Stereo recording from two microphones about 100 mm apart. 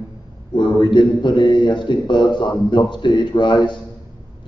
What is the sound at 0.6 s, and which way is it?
A man's voice, 50° left (ahead or behind).